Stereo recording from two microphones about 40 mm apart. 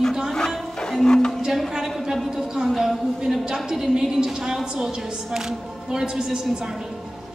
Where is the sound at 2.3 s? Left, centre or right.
Centre.